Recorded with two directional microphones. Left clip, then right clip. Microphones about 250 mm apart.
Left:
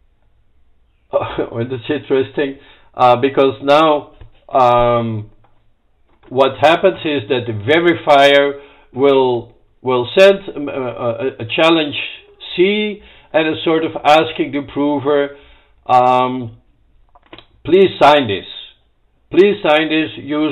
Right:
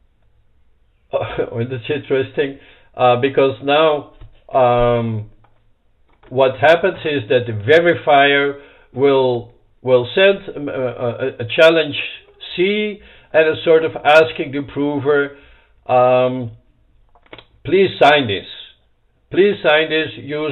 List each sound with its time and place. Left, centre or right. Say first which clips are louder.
1.1 s speech: left 2 dB; centre
6.3 s speech: left 1 dB; centre
19.2 s speech: left 2 dB; centre